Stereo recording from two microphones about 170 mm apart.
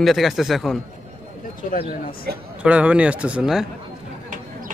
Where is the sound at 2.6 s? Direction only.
5° right (ahead or behind).